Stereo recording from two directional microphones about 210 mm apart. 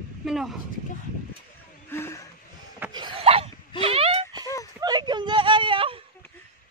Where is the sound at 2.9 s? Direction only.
25° right (ahead or behind).